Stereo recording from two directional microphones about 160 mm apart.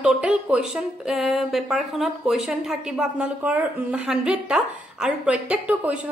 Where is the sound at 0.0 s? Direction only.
5° right (ahead or behind).